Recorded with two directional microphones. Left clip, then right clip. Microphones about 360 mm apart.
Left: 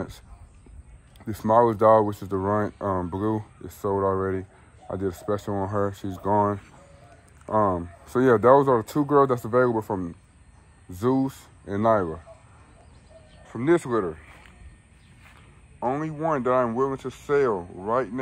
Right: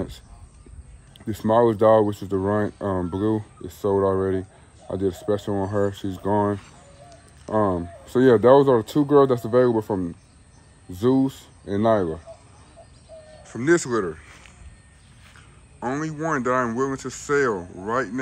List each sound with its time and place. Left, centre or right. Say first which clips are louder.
1.1 s speech: even; centre
13.4 s speech: right 2 dB; centre
15.8 s speech: left 1 dB; centre